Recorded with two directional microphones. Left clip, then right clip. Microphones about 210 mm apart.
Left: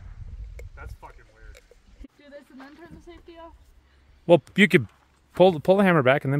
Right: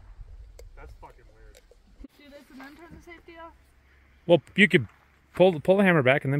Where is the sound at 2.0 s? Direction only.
10° right (ahead or behind).